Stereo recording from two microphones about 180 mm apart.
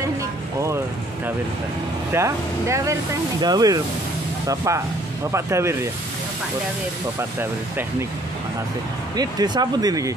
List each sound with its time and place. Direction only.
2.1 s speech: 15° right (ahead or behind)
7.2 s speech: 10° right (ahead or behind)
9.1 s speech: 20° right (ahead or behind)